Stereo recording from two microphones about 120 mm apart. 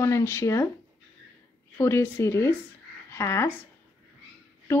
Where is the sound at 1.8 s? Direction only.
20° left (ahead or behind).